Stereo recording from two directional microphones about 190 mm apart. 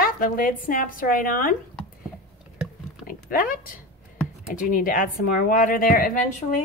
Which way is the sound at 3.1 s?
50° left (ahead or behind).